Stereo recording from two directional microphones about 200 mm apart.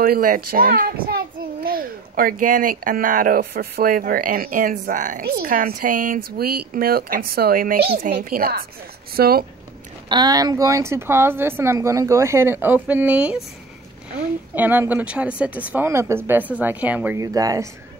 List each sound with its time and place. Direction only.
0.0 s a child's voice: 45° right (ahead or behind)
10.0 s speech: 20° right (ahead or behind)